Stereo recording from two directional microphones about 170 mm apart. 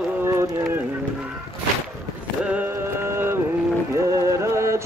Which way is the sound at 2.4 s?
10° right (ahead or behind).